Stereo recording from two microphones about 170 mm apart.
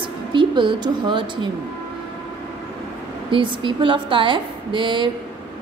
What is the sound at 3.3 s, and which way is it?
A woman's voice, 30° right (ahead or behind).